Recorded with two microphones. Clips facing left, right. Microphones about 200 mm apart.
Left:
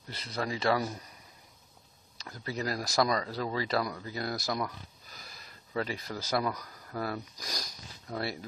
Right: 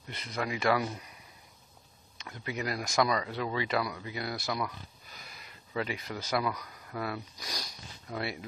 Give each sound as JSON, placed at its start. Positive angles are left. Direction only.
{"t": 0.1, "sound": "speech", "side_deg": 35}
{"t": 2.1, "sound": "speech", "side_deg": 35}